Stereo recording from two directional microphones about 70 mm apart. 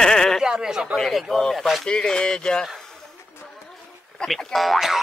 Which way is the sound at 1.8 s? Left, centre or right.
Centre.